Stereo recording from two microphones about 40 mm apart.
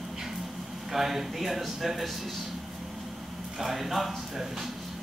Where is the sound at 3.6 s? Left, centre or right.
Centre.